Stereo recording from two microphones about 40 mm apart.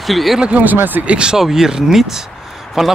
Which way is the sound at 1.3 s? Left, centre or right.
Centre.